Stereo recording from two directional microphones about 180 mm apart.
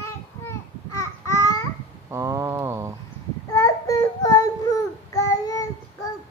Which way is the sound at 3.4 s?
20° left (ahead or behind).